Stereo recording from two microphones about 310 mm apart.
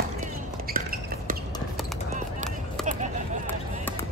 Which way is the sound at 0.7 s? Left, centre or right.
Right.